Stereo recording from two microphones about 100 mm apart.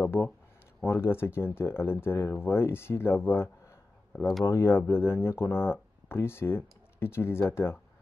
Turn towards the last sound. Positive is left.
turn(degrees=25)  # may be behind; listen again after turning